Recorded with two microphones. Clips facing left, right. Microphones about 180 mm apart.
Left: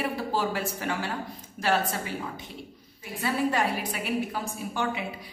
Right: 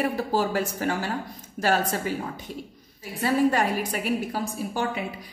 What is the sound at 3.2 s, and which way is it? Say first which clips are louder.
A woman's voice: right 4 dB; 40° right (ahead or behind).